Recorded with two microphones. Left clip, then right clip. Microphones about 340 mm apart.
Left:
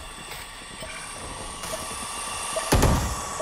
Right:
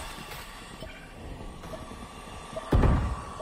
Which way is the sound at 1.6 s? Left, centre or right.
Left.